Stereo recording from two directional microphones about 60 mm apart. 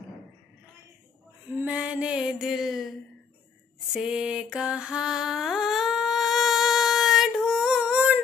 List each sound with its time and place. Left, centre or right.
1.7 s mantra: centre
2.1 s music: centre
3.9 s a sound: centre